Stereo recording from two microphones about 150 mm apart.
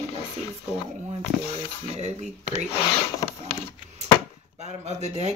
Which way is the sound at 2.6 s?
40° left (ahead or behind).